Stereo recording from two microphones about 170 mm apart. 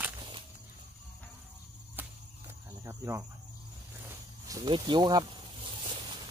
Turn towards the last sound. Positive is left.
turn(degrees=-30)  # may be behind; listen again after turning